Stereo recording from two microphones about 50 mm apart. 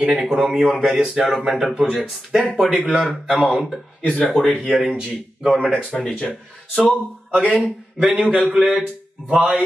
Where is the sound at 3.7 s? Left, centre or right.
Centre.